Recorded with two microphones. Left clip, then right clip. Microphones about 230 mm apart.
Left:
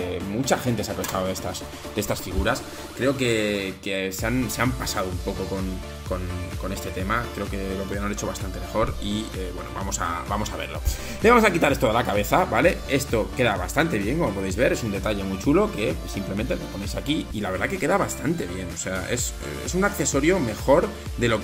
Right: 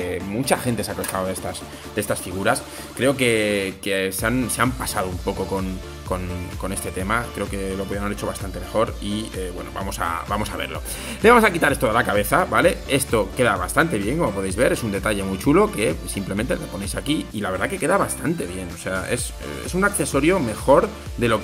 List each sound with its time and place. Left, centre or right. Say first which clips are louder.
0.1 s speech: right 2 dB; centre
3.0 s speech: right 4 dB; right
7.1 s speech: right 3 dB; centre
17.4 s speech: right 2 dB; centre